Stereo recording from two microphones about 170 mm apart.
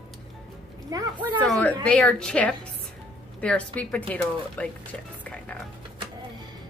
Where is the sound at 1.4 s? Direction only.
5° left (ahead or behind).